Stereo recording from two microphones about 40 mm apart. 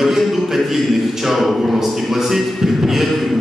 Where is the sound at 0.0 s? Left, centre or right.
Centre.